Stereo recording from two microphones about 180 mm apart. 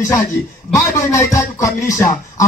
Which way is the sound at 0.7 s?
15° left (ahead or behind).